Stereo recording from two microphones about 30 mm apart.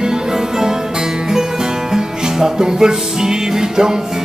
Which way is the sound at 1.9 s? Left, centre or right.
Centre.